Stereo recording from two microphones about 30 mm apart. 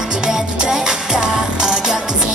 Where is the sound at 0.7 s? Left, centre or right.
Centre.